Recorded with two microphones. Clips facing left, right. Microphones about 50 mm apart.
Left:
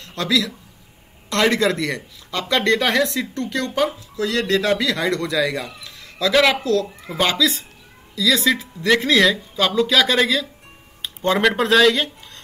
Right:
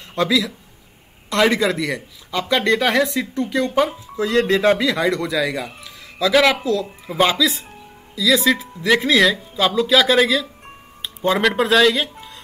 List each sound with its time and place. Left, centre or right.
0.0 s a man's voice: centre
5.0 s speech: centre